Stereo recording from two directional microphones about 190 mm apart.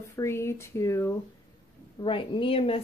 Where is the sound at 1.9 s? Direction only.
25° left (ahead or behind).